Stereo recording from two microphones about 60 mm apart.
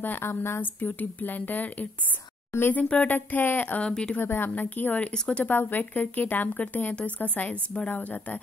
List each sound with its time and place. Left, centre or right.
0.0 s a woman's voice: left
0.7 s speech: left
3.1 s a woman's voice: left
3.8 s speech: centre
4.2 s a woman's voice: left
5.1 s speech: centre
5.4 s speech: left